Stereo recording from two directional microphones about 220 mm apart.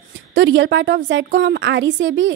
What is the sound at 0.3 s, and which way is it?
A woman's voice, 55° right (ahead or behind).